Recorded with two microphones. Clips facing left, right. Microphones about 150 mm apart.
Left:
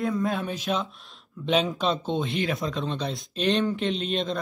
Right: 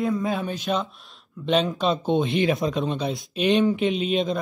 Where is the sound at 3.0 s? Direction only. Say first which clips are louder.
Right 2 dB; 5° right (ahead or behind).